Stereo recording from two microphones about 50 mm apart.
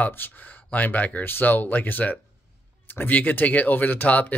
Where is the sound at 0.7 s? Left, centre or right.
Left.